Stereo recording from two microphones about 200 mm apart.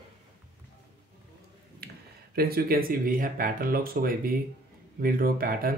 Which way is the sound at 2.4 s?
50° right (ahead or behind).